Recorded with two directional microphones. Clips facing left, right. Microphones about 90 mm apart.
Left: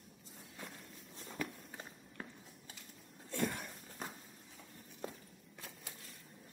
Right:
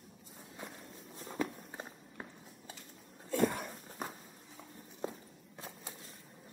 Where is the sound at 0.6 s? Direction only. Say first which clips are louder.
Right 3 dB; 10° right (ahead or behind).